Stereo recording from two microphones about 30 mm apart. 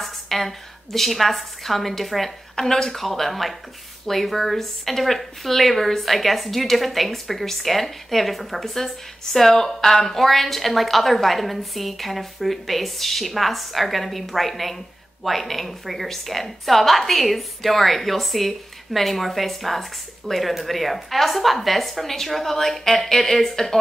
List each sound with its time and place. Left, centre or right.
0.0 s a woman's voice: centre
2.6 s speech: left
2.9 s a woman's voice: centre